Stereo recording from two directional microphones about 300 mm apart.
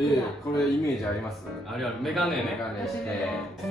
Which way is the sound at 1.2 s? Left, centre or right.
Centre.